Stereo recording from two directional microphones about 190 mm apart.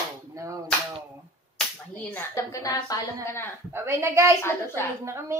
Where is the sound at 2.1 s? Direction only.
15° left (ahead or behind).